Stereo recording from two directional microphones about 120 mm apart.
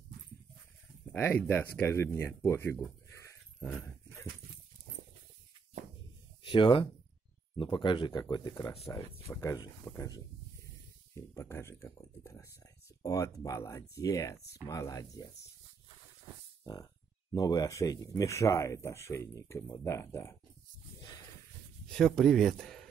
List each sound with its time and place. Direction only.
1.1 s speech: 15° left (ahead or behind)
3.6 s dog: 20° left (ahead or behind)
6.4 s speech: 45° left (ahead or behind)
17.3 s speech: 30° left (ahead or behind)
21.8 s speech: 5° left (ahead or behind)